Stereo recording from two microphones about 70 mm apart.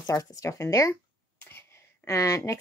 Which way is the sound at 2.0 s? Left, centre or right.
Left.